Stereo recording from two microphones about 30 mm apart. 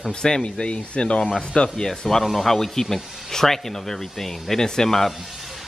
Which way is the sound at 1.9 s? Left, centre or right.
Centre.